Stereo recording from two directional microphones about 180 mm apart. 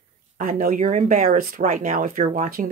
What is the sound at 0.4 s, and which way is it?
Speech, 50° right (ahead or behind).